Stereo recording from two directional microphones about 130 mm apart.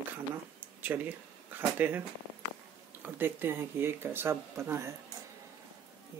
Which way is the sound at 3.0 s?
15° right (ahead or behind).